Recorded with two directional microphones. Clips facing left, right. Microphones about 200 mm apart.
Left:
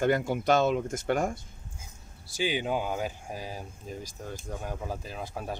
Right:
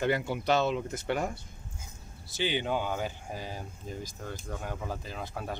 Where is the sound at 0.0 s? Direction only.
45° left (ahead or behind).